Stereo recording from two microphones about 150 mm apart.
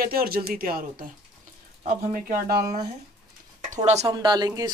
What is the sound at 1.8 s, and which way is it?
Speech, 65° right (ahead or behind).